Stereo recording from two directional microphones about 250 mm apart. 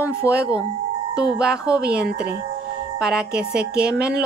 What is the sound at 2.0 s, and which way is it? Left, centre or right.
Speech, right.